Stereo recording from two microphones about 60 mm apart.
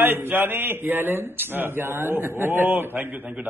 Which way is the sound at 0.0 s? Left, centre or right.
Right.